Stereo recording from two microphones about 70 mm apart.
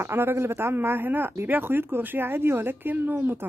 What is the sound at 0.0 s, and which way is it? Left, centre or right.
Speech, right.